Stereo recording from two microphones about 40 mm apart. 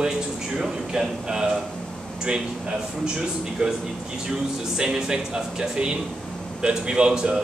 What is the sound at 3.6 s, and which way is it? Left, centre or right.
Speech, right.